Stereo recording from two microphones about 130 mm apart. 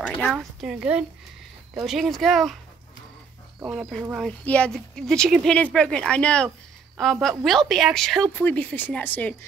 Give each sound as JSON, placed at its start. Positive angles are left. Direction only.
{"t": 0.1, "sound": "a woman's voice", "side_deg": 0}
{"t": 4.2, "sound": "a woman's voice", "side_deg": 10}